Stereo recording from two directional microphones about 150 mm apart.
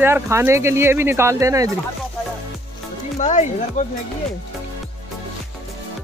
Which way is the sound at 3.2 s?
55° left (ahead or behind).